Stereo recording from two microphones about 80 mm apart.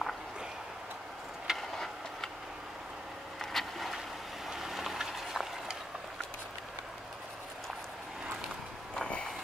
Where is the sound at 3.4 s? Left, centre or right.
Centre.